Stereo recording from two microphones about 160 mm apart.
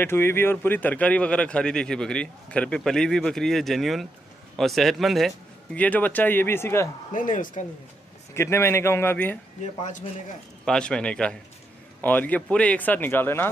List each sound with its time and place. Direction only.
0.0 s speech: 15° left (ahead or behind)
7.1 s speech: 55° left (ahead or behind)
8.4 s speech: 15° left (ahead or behind)
10.6 s speech: 5° left (ahead or behind)